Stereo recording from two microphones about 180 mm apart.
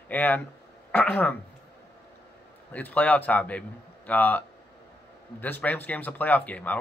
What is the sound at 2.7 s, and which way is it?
A man's voice, 10° left (ahead or behind).